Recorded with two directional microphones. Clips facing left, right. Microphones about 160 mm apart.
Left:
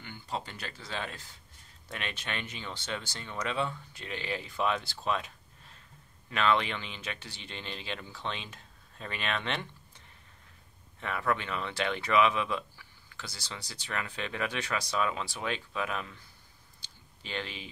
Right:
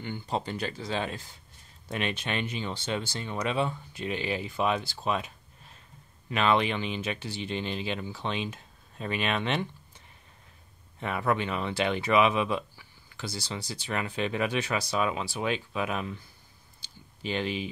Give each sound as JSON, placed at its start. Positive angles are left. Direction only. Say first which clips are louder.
{"t": 0.0, "sound": "speech", "louder": "right 6 dB", "side_deg": -20}
{"t": 6.3, "sound": "speech", "louder": "right 3 dB", "side_deg": -15}
{"t": 11.0, "sound": "speech", "louder": "right 4 dB", "side_deg": -20}
{"t": 17.2, "sound": "speech", "louder": "right 8 dB", "side_deg": -15}